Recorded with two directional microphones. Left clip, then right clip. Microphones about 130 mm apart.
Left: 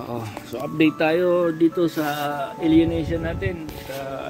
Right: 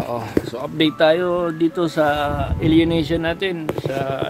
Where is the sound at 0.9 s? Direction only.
15° right (ahead or behind).